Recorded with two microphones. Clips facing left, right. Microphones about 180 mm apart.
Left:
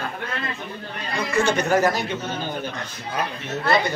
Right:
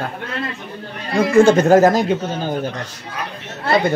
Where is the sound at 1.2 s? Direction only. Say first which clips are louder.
Right 10 dB; 50° right (ahead or behind).